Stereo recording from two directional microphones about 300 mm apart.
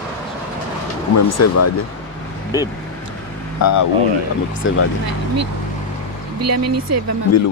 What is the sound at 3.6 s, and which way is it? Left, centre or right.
Speech, left.